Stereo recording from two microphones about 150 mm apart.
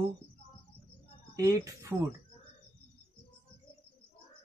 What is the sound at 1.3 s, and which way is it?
Speech, 25° right (ahead or behind).